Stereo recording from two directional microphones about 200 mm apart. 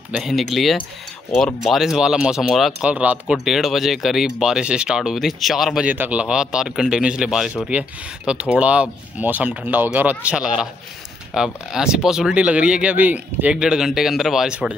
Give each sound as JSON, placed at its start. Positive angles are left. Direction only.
{"t": 0.1, "sound": "speech", "side_deg": 0}